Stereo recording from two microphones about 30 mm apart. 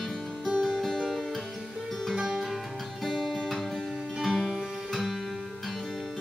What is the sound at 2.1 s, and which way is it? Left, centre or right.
Music, centre.